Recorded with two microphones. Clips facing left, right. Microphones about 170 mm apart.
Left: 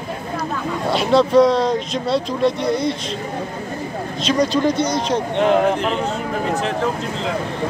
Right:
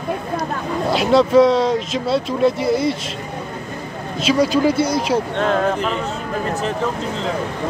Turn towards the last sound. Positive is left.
turn(degrees=15)  # may be behind; listen again after turning